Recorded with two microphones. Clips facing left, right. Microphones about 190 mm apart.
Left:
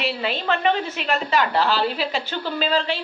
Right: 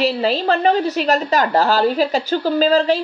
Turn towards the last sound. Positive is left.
turn(degrees=-40)  # may be behind; listen again after turning